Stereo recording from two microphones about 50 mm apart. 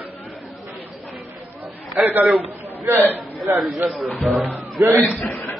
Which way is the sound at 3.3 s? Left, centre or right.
Centre.